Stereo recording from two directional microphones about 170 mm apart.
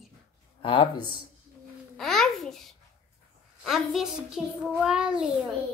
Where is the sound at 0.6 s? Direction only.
30° left (ahead or behind).